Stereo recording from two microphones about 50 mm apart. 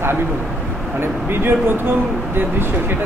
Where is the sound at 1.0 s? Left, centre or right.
Right.